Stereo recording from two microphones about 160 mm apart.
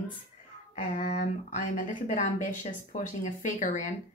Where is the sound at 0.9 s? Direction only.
45° left (ahead or behind).